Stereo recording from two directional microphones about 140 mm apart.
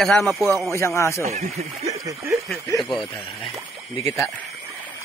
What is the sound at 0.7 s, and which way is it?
Speech, 20° left (ahead or behind).